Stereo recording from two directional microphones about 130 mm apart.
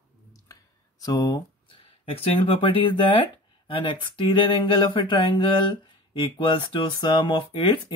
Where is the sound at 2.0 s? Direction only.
45° left (ahead or behind).